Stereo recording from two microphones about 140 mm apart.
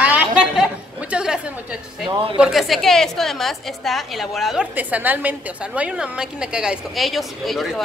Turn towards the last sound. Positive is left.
turn(degrees=0)  # may be behind; listen again after turning